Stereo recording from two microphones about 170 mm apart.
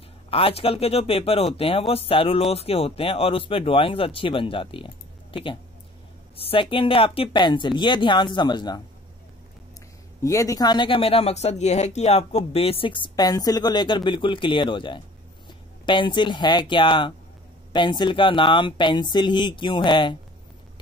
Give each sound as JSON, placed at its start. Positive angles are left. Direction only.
{"t": 0.3, "sound": "speech", "side_deg": 35}
{"t": 10.2, "sound": "speech", "side_deg": 20}